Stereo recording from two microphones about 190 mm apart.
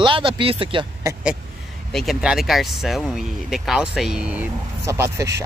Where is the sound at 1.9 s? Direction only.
Centre (ahead or behind); by 5.4 s 15° right (ahead or behind).